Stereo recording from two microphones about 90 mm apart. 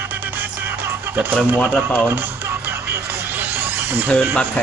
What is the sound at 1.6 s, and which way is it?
Speech, 15° left (ahead or behind).